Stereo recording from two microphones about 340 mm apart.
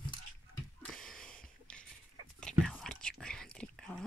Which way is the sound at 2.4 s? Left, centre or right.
Centre.